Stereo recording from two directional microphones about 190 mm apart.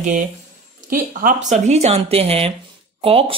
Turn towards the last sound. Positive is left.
turn(degrees=-30)  # may be behind; listen again after turning